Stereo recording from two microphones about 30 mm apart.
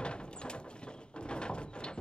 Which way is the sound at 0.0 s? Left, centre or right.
Left.